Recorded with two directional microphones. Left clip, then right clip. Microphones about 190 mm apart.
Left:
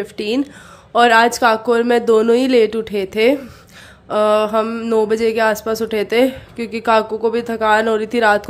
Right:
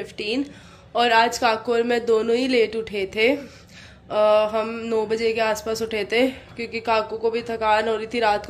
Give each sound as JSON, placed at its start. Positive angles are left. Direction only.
{"t": 0.0, "sound": "speech", "side_deg": 40}